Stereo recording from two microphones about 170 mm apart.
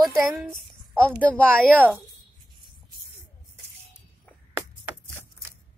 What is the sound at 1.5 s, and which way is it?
Speech, 10° right (ahead or behind).